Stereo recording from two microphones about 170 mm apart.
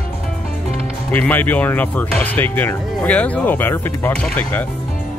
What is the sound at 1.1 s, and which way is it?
Speech, 10° left (ahead or behind).